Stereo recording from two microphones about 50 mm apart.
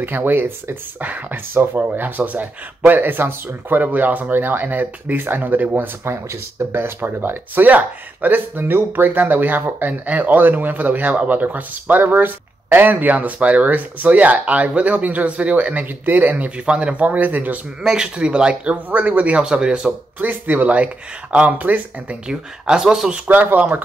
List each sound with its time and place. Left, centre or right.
0.0 s speech: right
7.6 s speech: right
17.8 s speech: centre
20.2 s speech: right
22.3 s speech: centre
23.2 s speech: right